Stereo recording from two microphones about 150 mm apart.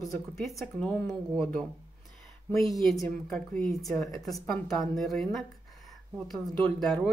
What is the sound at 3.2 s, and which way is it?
A woman's voice, 5° left (ahead or behind).